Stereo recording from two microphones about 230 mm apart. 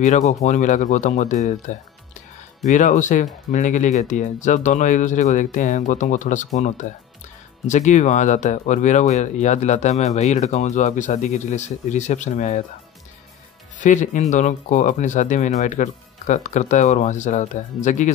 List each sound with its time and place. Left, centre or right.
0.0 s speech: left
13.7 s speech: left